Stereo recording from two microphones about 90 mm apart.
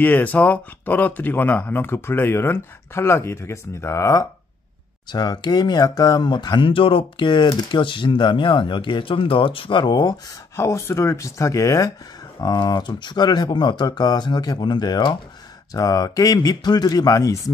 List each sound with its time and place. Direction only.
0.0 s speech: 20° left (ahead or behind); by 4.3 s 35° left (ahead or behind)
5.1 s speech: 50° left (ahead or behind)
10.5 s speech: 30° left (ahead or behind); by 15.1 s 55° left (ahead or behind)
15.7 s speech: 40° left (ahead or behind)